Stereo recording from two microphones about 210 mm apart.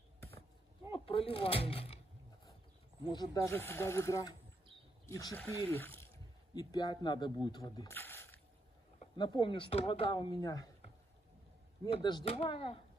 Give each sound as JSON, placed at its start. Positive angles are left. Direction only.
{"t": 0.9, "sound": "speech", "side_deg": 25}
{"t": 3.1, "sound": "speech", "side_deg": 15}
{"t": 9.0, "sound": "speech", "side_deg": 20}
{"t": 11.8, "sound": "speech", "side_deg": 20}